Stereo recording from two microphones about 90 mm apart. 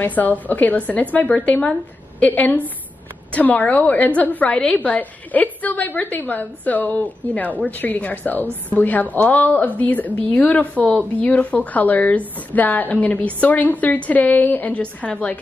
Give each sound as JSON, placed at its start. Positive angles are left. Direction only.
{"t": 0.0, "sound": "a woman's voice", "side_deg": 20}